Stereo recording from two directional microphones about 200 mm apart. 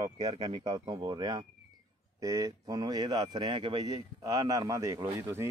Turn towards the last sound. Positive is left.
turn(degrees=-15)  # may be behind; listen again after turning